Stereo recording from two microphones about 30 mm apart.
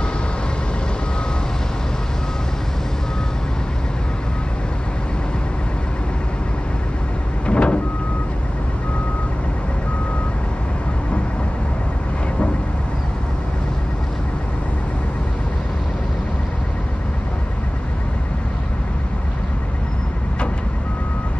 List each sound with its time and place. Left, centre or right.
7.4 s vehicle: left